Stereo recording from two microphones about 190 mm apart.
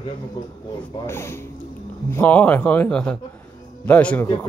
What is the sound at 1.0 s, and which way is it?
Speech, 10° left (ahead or behind).